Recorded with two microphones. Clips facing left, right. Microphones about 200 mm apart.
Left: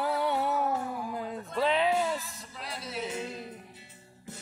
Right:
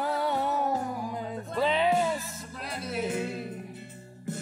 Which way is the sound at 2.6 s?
55° right (ahead or behind).